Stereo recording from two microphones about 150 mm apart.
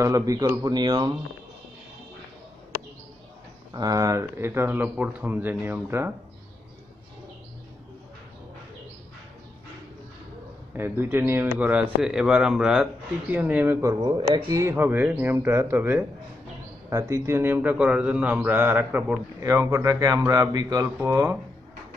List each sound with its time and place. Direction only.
0.0 s speech: 25° right (ahead or behind)
3.7 s speech: 25° right (ahead or behind)
10.7 s speech: 15° right (ahead or behind)
14.6 s speech: 15° right (ahead or behind)
19.4 s speech: 20° right (ahead or behind)